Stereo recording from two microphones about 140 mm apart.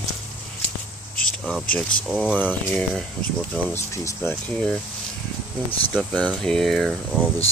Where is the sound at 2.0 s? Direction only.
5° right (ahead or behind).